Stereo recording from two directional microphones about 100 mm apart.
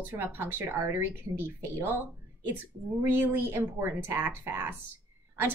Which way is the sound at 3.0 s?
20° right (ahead or behind).